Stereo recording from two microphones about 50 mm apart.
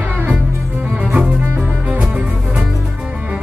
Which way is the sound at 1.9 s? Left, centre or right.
Right.